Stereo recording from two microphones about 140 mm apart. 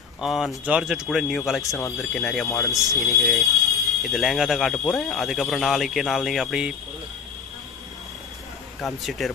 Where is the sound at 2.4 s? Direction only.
20° left (ahead or behind).